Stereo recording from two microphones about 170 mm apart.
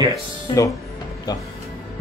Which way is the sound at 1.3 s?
20° left (ahead or behind).